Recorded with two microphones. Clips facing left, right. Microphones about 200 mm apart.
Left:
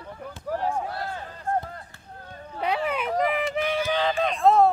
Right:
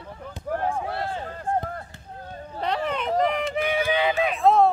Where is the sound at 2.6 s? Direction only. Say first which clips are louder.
Even; 10° left (ahead or behind).